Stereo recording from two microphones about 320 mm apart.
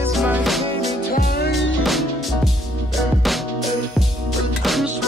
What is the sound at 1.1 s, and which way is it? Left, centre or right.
Music, left.